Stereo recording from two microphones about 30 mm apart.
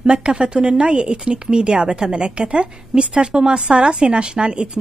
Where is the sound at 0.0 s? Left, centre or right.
Right.